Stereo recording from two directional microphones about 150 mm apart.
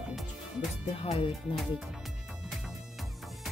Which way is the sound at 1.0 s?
40° left (ahead or behind).